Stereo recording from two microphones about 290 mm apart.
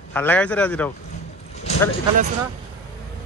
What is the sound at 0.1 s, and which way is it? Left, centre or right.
Speech, centre.